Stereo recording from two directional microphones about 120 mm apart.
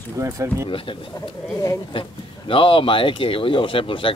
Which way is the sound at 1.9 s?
45° left (ahead or behind).